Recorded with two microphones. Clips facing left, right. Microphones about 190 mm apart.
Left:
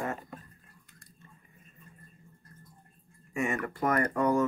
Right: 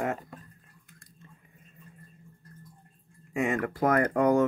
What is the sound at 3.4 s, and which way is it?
Speech, 90° right.